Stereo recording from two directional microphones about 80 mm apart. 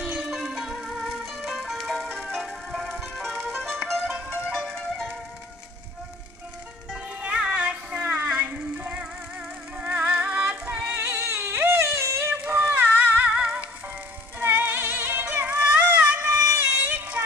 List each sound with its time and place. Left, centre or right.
0.0 s music: centre
7.2 s music: centre
11.1 s music: right
12.7 s music: right
16.6 s a sound: right